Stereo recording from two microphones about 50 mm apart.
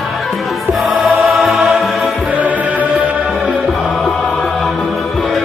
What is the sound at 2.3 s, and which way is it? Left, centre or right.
Music, right.